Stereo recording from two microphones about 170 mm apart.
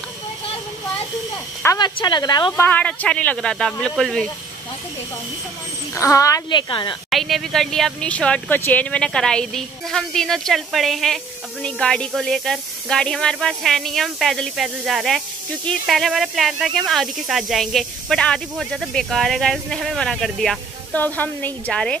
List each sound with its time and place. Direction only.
1.8 s a woman's voice: 25° left (ahead or behind)
2.6 s speech: 10° left (ahead or behind)
5.9 s a woman's voice: 20° left (ahead or behind)
7.1 s speech: centre (ahead or behind)